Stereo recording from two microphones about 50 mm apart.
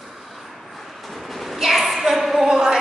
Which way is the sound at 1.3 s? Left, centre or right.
Centre.